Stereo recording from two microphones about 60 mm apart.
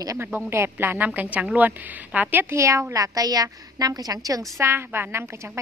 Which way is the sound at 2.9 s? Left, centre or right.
Right.